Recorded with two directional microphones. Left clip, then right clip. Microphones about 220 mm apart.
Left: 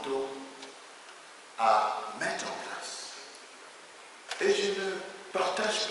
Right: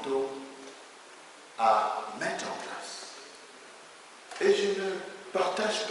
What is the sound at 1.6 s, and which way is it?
A man's voice, 5° right (ahead or behind).